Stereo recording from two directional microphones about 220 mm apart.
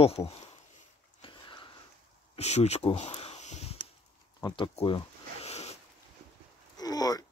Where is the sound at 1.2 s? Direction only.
20° left (ahead or behind).